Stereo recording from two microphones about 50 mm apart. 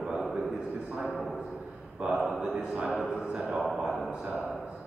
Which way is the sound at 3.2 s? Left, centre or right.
Centre.